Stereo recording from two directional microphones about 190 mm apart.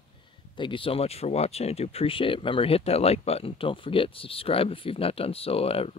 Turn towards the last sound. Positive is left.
turn(degrees=30)  # may be behind; listen again after turning